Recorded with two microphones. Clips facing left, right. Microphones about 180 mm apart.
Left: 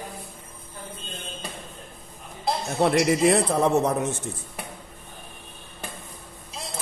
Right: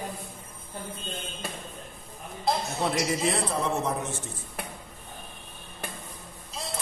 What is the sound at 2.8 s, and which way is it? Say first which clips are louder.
Speech: left 8 dB; 75° left (ahead or behind).